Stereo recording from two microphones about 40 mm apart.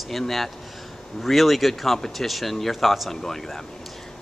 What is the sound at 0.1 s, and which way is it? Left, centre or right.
A woman's voice, centre.